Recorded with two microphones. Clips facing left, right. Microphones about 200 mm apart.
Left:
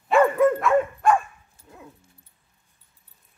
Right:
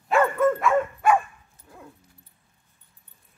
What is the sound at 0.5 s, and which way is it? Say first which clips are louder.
Dog: left 2 dB; 5° right (ahead or behind).